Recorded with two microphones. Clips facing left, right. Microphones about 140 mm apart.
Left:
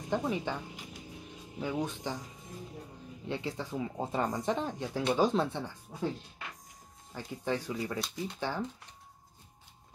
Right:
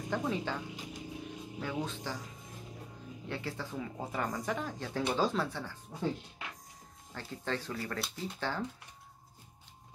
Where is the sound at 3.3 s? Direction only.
20° left (ahead or behind).